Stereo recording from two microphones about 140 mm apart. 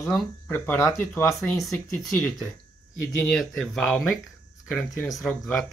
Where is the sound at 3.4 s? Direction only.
Centre (ahead or behind).